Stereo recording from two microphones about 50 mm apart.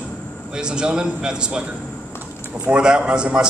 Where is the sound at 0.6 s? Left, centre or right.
Centre.